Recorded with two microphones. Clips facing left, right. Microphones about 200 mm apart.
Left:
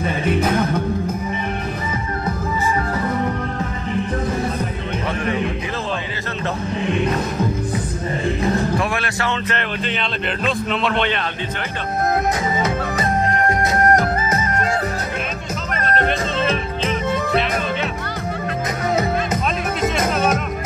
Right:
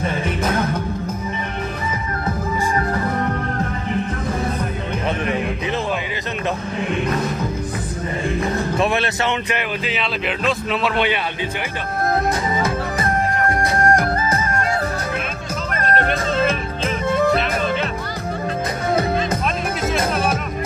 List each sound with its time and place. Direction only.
8.7 s music: 25° right (ahead or behind)
9.5 s speech: 5° right (ahead or behind)
12.6 s music: 20° left (ahead or behind)
15.7 s music: centre (ahead or behind)